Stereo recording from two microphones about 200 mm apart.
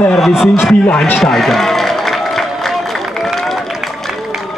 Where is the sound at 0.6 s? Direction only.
5° left (ahead or behind).